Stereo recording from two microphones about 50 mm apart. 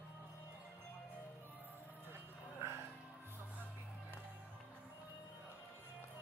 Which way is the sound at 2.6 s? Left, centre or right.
Right.